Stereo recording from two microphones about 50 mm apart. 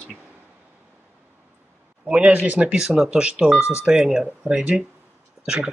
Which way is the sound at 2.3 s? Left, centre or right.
Right.